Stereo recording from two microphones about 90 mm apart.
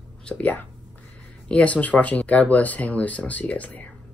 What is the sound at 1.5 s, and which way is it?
Speech, 15° left (ahead or behind).